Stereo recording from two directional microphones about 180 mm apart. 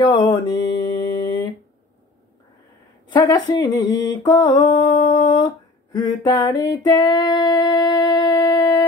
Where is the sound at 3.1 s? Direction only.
20° left (ahead or behind).